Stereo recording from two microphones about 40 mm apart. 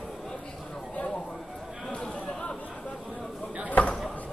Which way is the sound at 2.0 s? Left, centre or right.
Centre.